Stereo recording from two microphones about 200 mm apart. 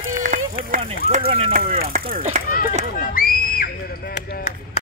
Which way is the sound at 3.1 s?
45° left (ahead or behind).